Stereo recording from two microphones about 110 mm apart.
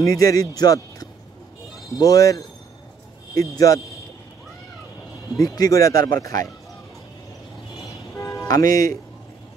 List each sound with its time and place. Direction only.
0.0 s speech: 30° left (ahead or behind)
3.5 s speech: 30° left (ahead or behind)
5.4 s speech: 30° left (ahead or behind)
8.2 s toot: 30° left (ahead or behind)